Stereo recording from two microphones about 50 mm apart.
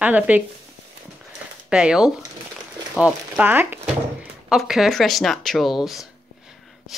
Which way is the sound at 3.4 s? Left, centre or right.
Right.